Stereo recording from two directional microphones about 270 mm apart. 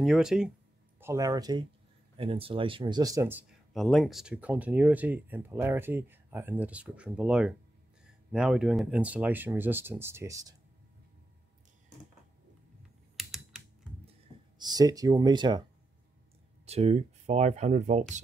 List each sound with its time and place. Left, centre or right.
0.0 s speech: centre
13.2 s typing: centre
14.6 s speech: centre
16.6 s speech: right